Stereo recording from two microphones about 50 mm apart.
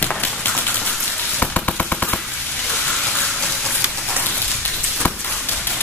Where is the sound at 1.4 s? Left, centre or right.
Left.